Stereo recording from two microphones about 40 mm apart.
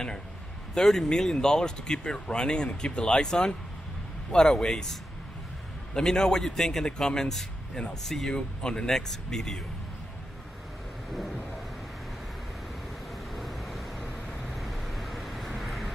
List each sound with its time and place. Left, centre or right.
0.7 s speech: centre
5.9 s speech: centre
13.3 s vehicle: centre